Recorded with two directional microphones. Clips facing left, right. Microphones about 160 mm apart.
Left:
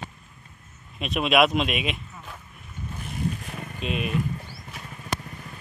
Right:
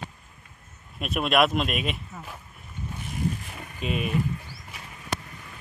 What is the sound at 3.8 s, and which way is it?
Speech, 5° right (ahead or behind).